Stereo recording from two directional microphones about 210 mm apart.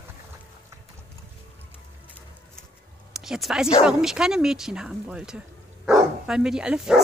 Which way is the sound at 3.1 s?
Centre (ahead or behind).